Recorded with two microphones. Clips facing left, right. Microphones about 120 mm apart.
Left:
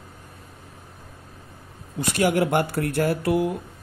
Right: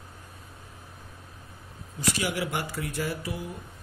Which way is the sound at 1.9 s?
60° left (ahead or behind).